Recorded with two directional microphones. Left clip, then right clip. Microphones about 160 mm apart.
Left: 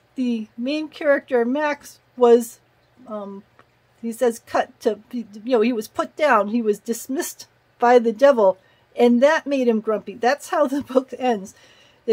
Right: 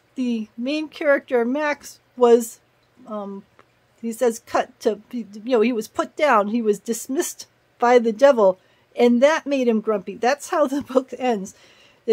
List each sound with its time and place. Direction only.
0.1 s a woman's voice: 25° right (ahead or behind)
4.0 s a woman's voice: 25° right (ahead or behind)